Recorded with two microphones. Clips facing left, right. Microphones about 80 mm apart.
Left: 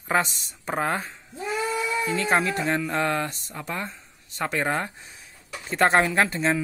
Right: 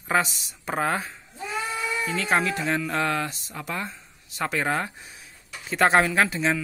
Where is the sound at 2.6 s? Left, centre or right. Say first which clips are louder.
Left 1 dB; centre.